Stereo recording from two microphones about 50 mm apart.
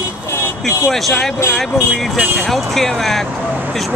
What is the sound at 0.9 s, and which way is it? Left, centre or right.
Speech, centre.